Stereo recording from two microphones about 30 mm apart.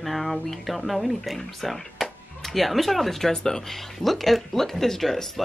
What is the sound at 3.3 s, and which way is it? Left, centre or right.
Speech, left.